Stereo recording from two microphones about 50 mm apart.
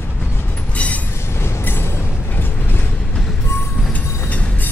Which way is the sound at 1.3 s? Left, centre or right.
Left.